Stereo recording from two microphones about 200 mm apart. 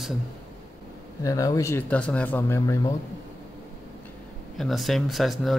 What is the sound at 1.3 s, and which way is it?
Speech, 15° left (ahead or behind).